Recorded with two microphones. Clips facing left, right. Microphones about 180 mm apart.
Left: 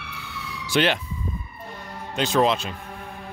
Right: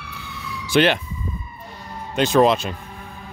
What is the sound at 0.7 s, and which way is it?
Speech, 55° right (ahead or behind).